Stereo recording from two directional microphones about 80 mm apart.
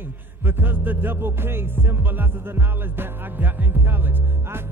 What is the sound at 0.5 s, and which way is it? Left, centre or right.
Music, right.